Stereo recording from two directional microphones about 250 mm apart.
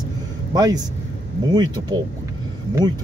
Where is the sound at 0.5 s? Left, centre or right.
Centre.